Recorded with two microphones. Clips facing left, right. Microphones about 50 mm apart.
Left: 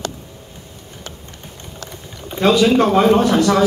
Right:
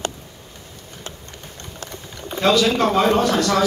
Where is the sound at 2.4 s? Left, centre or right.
Left.